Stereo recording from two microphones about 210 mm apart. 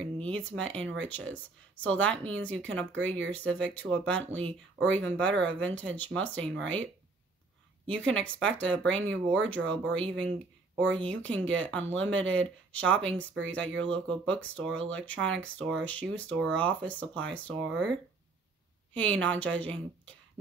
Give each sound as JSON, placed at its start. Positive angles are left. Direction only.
{"t": 0.0, "sound": "a sound", "side_deg": 5}
{"t": 0.6, "sound": "speech", "side_deg": 5}
{"t": 7.8, "sound": "speech", "side_deg": 5}
{"t": 17.6, "sound": "speech", "side_deg": -60}
{"t": 18.9, "sound": "speech", "side_deg": 5}